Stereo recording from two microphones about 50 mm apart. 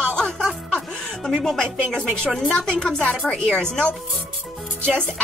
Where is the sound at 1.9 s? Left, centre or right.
Centre.